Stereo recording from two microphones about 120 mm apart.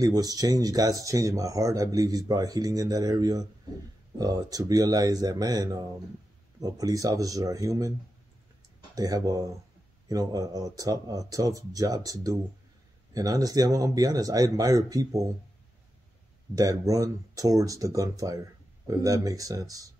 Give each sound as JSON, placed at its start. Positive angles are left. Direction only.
{"t": 0.0, "sound": "speech", "side_deg": -30}
{"t": 8.9, "sound": "speech", "side_deg": -30}
{"t": 16.5, "sound": "speech", "side_deg": -30}